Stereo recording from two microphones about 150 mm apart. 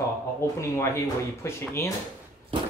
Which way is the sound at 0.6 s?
20° left (ahead or behind).